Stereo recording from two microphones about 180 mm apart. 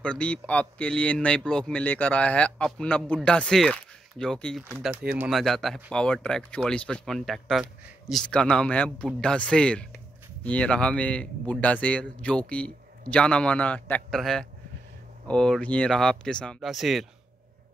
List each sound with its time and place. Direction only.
0.0 s speech: 5° left (ahead or behind)